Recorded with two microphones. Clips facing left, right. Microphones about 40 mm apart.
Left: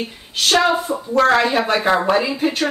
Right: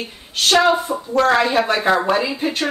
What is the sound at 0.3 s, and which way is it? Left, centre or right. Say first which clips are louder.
A woman's voice: right 1 dB; centre.